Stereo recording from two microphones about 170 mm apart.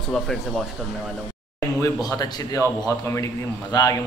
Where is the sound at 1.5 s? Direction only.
20° left (ahead or behind).